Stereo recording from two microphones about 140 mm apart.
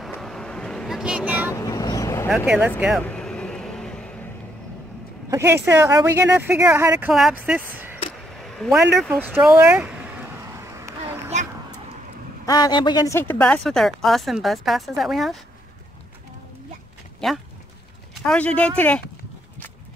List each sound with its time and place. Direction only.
0.1 s vehicle: 5° left (ahead or behind)
1.5 s vehicle: 25° left (ahead or behind)
2.2 s speech: 5° right (ahead or behind)
3.0 s vehicle: 10° left (ahead or behind)
5.3 s speech: 20° right (ahead or behind)
8.4 s speech: centre (ahead or behind)
9.2 s a sound: 15° right (ahead or behind)
10.5 s a sound: 20° right (ahead or behind)
12.4 s speech: 30° left (ahead or behind)
13.1 s speech: 15° left (ahead or behind); by 15.3 s centre (ahead or behind)
17.2 s speech: 5° left (ahead or behind)